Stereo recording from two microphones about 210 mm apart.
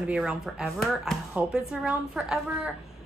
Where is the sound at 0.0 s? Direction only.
5° right (ahead or behind).